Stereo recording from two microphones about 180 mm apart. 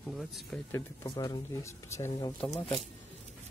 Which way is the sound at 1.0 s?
25° left (ahead or behind).